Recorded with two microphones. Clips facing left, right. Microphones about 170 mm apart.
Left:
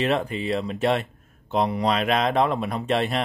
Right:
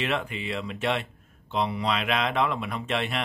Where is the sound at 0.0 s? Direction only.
35° left (ahead or behind).